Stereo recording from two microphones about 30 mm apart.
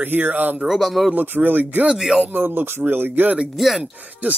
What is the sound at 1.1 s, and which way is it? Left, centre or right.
Speech, right.